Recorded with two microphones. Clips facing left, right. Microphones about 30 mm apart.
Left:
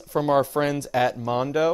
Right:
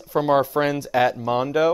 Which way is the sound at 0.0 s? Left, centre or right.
Centre.